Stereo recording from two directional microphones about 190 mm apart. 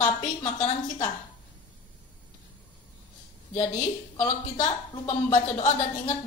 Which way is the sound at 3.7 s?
40° left (ahead or behind).